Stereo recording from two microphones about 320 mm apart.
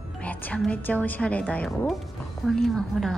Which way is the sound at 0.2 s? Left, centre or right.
Centre.